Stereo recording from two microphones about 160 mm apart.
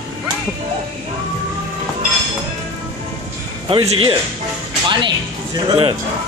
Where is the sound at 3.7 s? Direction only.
35° right (ahead or behind).